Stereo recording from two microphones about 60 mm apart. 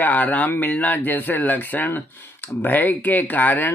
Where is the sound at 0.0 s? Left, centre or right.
Left.